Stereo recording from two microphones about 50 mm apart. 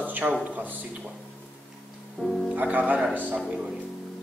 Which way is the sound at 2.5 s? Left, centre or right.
Right.